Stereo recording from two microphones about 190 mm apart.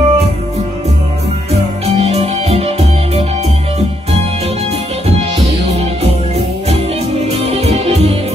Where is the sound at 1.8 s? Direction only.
35° right (ahead or behind).